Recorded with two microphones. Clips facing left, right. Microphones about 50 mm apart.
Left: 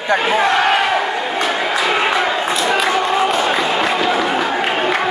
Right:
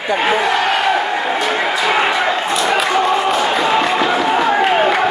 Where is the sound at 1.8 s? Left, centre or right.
Centre.